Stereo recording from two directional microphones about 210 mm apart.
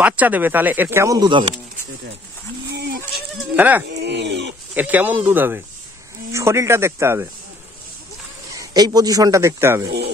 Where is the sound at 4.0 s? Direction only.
55° right (ahead or behind).